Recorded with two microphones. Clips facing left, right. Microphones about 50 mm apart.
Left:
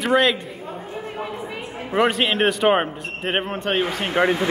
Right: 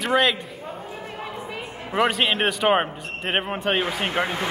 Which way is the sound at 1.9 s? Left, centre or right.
Centre.